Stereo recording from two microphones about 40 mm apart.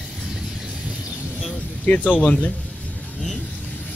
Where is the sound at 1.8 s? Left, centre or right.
Left.